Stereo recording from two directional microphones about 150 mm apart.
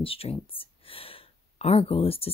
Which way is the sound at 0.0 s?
40° left (ahead or behind).